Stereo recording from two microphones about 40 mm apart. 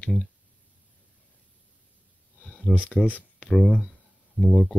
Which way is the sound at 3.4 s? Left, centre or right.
Centre.